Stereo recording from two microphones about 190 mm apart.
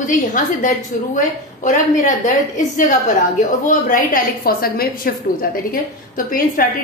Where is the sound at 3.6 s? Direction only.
40° left (ahead or behind).